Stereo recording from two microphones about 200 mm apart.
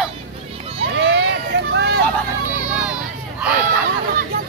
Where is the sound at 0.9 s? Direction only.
60° right (ahead or behind).